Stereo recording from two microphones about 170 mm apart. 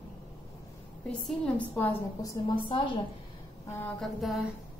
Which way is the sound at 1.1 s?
10° left (ahead or behind).